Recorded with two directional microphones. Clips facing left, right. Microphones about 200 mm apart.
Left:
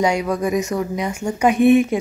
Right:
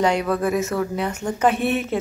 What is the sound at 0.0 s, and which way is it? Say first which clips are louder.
A woman's voice: left 1 dB; 10° left (ahead or behind).